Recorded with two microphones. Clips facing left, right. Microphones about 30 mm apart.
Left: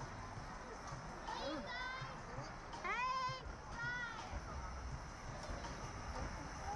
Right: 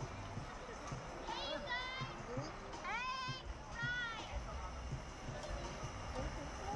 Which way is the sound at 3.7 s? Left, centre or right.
Right.